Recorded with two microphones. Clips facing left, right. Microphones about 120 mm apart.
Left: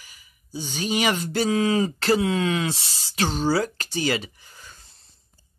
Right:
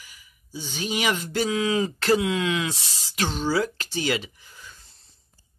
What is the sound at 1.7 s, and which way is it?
Speech, 40° left (ahead or behind).